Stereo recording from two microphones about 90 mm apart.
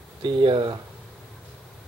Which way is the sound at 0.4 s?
65° right (ahead or behind).